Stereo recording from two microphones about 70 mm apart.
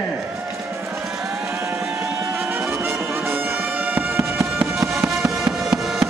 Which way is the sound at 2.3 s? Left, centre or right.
Right.